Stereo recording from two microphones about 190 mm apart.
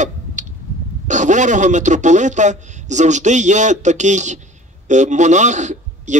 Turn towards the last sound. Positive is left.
turn(degrees=-40)  # may be behind; listen again after turning